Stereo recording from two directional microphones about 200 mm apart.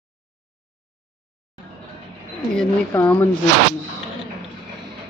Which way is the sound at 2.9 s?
10° left (ahead or behind).